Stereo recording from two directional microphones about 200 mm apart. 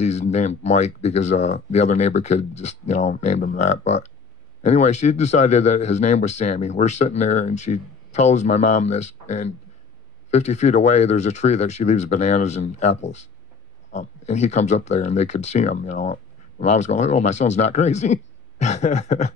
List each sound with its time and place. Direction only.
0.0 s speech: 35° left (ahead or behind)
10.3 s speech: 35° left (ahead or behind)